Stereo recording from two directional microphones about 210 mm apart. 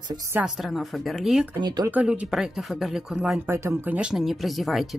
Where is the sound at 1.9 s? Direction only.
5° right (ahead or behind).